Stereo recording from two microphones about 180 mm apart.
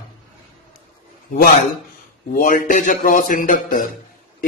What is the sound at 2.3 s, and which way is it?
A man's voice, 50° left (ahead or behind).